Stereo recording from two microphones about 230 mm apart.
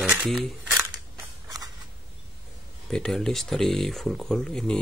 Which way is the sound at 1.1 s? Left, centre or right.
Centre.